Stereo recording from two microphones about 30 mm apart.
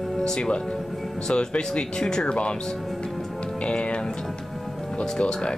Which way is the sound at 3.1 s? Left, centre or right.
Centre.